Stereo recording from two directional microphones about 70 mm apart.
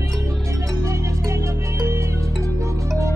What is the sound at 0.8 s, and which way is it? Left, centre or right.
Music, right.